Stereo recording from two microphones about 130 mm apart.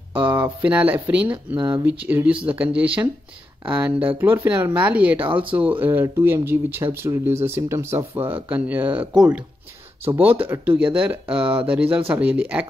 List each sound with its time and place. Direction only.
0.3 s speech: 25° right (ahead or behind)
0.7 s speech: 10° right (ahead or behind)
1.6 s speech: 30° right (ahead or behind)
1.9 s speech: 15° right (ahead or behind)
5.2 s speech: 40° right (ahead or behind)
5.5 s speech: 10° right (ahead or behind)